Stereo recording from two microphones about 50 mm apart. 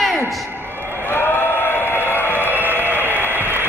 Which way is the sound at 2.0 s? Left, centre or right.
Left.